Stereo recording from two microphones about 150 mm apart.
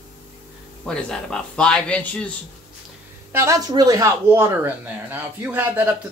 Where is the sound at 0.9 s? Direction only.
5° left (ahead or behind).